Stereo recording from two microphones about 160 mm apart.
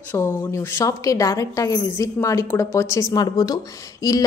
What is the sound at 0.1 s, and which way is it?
A woman's voice, 15° left (ahead or behind).